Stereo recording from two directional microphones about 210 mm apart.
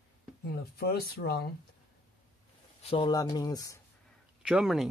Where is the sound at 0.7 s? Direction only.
50° left (ahead or behind).